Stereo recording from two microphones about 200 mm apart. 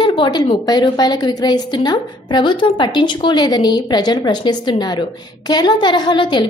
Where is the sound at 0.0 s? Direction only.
25° left (ahead or behind).